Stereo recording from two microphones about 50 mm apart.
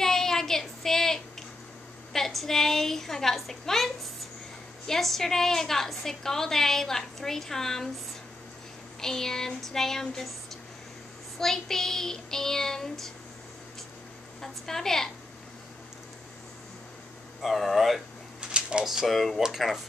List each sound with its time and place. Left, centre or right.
0.0 s child singing: centre
2.1 s a woman's voice: centre
9.0 s a woman's voice: centre
11.3 s a woman's voice: centre
14.4 s a woman's voice: centre
17.4 s speech: centre
18.4 s a sound: centre
18.9 s speech: centre